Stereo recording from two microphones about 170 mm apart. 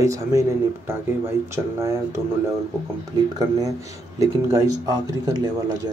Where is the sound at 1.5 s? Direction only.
15° right (ahead or behind).